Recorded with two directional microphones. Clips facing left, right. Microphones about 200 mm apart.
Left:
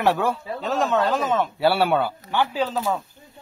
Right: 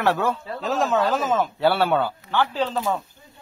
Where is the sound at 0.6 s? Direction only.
Centre (ahead or behind).